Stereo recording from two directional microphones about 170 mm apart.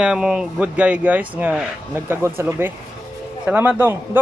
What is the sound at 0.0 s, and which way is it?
Speech, 5° right (ahead or behind).